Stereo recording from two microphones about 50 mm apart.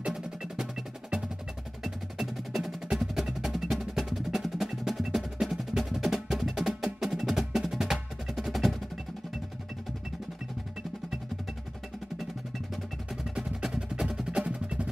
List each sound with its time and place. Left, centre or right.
0.0 s percussion: centre
1.8 s music: centre
13.3 s music: centre
14.4 s percussion: right